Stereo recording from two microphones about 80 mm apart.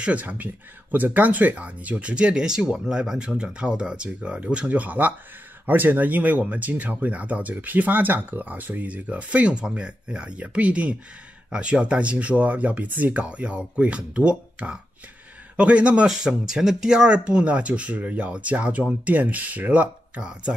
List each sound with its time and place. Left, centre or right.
0.0 s speech: centre